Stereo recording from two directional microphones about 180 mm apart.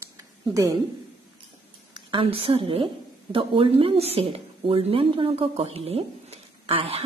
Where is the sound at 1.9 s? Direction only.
30° right (ahead or behind).